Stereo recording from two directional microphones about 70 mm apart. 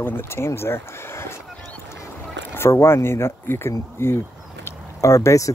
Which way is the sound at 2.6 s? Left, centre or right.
Left.